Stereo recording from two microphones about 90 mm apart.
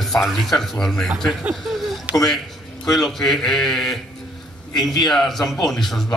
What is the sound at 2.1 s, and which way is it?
Speech, 15° right (ahead or behind).